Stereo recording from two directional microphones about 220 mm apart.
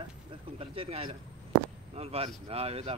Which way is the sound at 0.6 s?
25° right (ahead or behind).